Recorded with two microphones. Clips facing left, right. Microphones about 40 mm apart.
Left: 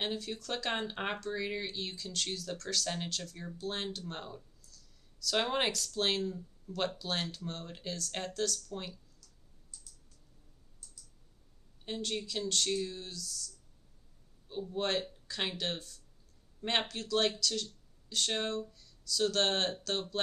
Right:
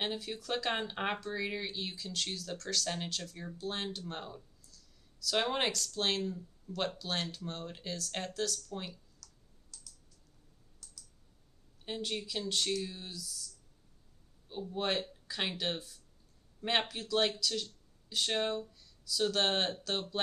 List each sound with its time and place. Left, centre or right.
0.0 s speech: centre
9.2 s clicking: right
11.8 s speech: centre
14.5 s speech: centre